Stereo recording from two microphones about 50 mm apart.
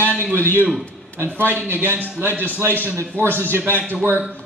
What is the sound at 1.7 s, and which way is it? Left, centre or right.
A man's voice, right.